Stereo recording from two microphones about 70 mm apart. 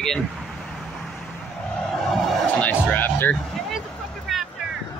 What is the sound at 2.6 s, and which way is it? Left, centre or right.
Music, left.